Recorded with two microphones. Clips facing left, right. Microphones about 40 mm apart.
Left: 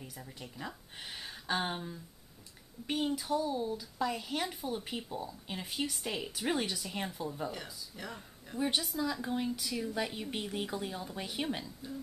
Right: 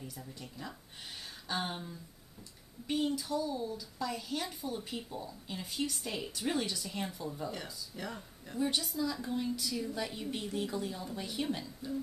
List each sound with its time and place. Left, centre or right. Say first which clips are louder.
0.4 s speech: left 5 dB; centre
3.2 s speech: left 2 dB; left; by 8.5 s centre
8.5 s speech: even; left; by 11.9 s centre